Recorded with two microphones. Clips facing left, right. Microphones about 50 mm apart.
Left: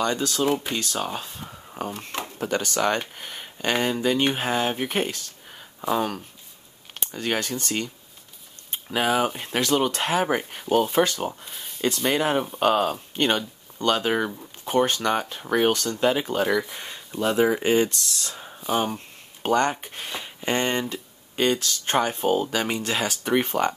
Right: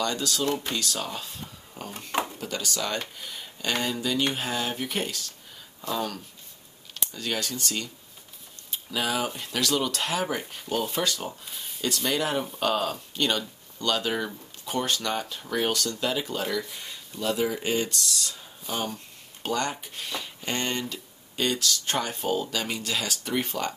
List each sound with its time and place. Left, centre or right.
0.0 s speech: left
3.2 s a sound: left
3.8 s speech: left